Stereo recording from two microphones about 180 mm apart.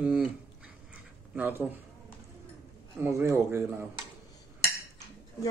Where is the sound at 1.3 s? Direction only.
10° right (ahead or behind).